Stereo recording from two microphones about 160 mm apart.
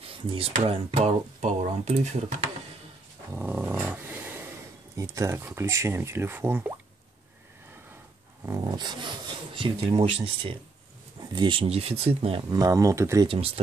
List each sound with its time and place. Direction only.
0.0 s a sound: 35° right (ahead or behind)
0.7 s speech: 40° right (ahead or behind)
3.3 s dog: 15° right (ahead or behind)
5.1 s speech: 15° right (ahead or behind)
8.5 s speech: 25° right (ahead or behind)
12.4 s speech: 20° right (ahead or behind)